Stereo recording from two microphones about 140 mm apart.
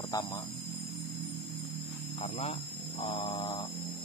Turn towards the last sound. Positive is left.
turn(degrees=30)  # may be behind; listen again after turning